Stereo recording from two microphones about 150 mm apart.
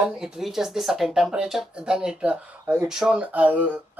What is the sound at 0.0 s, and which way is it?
Speech, 5° right (ahead or behind).